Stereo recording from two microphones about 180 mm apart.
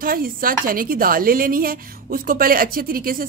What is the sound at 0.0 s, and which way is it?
A woman's voice, 55° right (ahead or behind).